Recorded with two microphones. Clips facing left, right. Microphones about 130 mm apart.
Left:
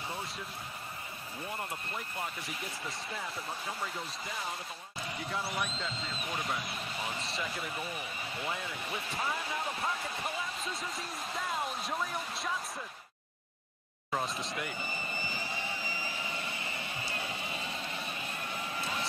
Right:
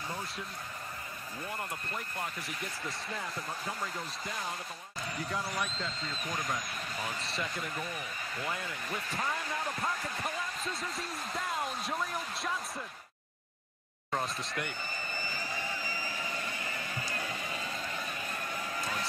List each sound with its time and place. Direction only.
2.1 s speech: centre (ahead or behind)
5.3 s speech: 5° left (ahead or behind)
9.2 s basketball bounce: 5° left (ahead or behind)
14.1 s speech: centre (ahead or behind)
15.1 s vehicle: 25° left (ahead or behind)
17.2 s music: 25° left (ahead or behind)